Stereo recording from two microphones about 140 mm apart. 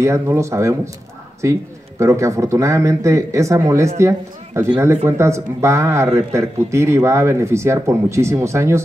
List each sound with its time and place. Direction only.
0.0 s speech: 20° right (ahead or behind)